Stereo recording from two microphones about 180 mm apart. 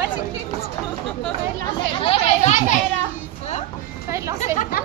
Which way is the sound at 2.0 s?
35° left (ahead or behind).